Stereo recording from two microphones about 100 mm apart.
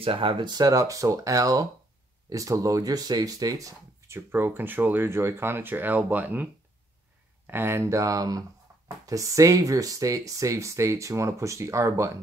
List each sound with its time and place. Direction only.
0.0 s speech: 60° right (ahead or behind)
0.5 s speech: 40° right (ahead or behind)
4.3 s speech: 20° right (ahead or behind)